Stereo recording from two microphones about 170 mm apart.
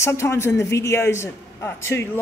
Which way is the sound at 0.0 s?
15° left (ahead or behind).